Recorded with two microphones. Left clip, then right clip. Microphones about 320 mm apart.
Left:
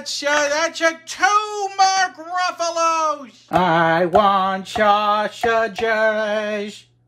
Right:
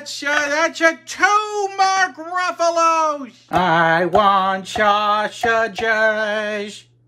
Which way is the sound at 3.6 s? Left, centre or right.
Right.